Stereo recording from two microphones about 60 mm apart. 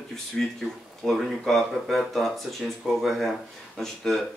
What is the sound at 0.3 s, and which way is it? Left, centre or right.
Speech, centre.